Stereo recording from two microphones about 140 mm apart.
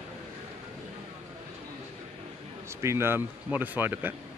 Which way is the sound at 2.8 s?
20° right (ahead or behind).